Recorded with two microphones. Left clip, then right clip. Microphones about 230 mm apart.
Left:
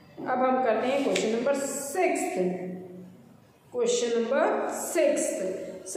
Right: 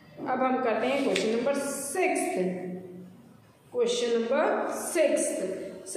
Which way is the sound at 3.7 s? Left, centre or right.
Centre.